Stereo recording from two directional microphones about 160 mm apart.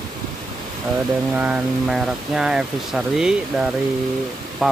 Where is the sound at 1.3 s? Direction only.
10° right (ahead or behind).